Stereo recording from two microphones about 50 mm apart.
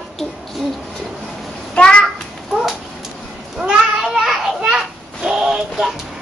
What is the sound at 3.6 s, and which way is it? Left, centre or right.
Children playing, right.